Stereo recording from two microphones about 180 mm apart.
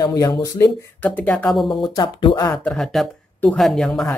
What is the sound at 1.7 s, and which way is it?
Speech, 25° left (ahead or behind).